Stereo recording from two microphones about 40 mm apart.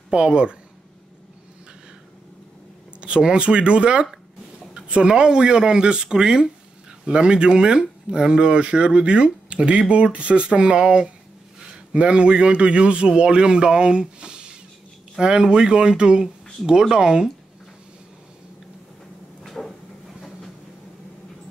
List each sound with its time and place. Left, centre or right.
0.1 s speech: right
3.0 s speech: right
19.4 s a sound: centre